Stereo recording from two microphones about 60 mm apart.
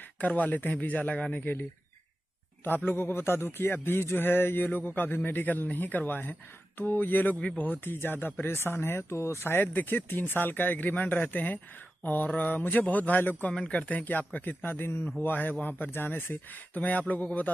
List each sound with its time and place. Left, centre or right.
0.2 s a man's voice: left
1.4 s speech: left
9.6 s a man's voice: left
13.5 s a man's voice: centre